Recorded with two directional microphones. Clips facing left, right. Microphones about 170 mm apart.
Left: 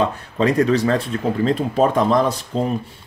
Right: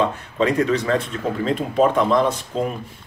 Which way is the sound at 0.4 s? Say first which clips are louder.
Left 3 dB; 40° left (ahead or behind).